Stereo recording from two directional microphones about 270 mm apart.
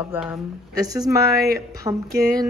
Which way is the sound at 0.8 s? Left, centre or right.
Centre.